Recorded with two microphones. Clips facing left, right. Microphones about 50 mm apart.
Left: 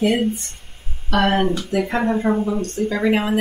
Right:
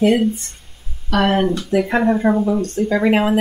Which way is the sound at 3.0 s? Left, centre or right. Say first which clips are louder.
Right 3 dB; right.